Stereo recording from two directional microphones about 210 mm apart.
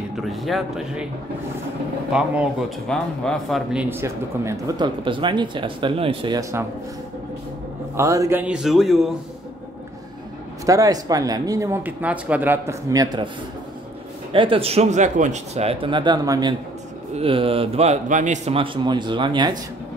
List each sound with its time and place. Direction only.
0.1 s a man's voice: centre (ahead or behind)
2.1 s a man's voice: 5° right (ahead or behind)
3.9 s speech: 15° right (ahead or behind)
7.9 s a man's voice: 15° right (ahead or behind)
10.6 s speech: 15° right (ahead or behind)
14.3 s speech: 25° right (ahead or behind)